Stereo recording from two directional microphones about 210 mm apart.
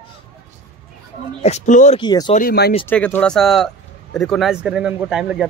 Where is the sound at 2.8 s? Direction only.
10° left (ahead or behind).